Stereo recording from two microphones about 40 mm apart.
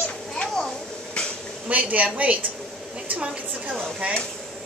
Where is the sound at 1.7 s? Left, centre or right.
Right.